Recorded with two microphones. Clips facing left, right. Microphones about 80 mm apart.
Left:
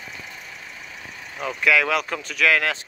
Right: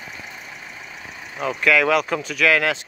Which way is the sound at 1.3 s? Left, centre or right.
Centre.